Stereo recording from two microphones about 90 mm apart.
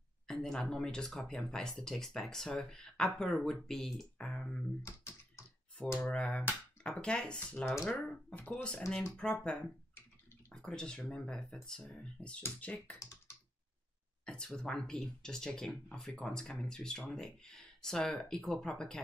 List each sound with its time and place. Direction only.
0.3 s speech: 5° left (ahead or behind)
4.8 s typewriter: 30° left (ahead or behind)
6.0 s speech: 10° left (ahead or behind)
14.2 s speech: 10° left (ahead or behind)